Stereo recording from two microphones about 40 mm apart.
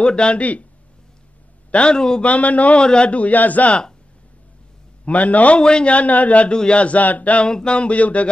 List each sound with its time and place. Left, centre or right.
0.0 s a man's voice: left
0.4 s speech: left
1.7 s a man's voice: left
2.2 s speech: left
2.8 s speech: left
5.0 s speech: left
5.6 s a man's voice: left
5.9 s speech: left
6.5 s a man's voice: left
6.8 s speech: left
7.5 s speech: left